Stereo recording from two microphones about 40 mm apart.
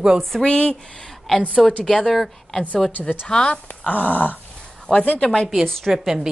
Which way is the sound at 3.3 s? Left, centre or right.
Left.